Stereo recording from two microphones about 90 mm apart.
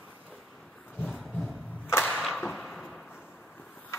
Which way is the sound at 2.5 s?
Centre (ahead or behind).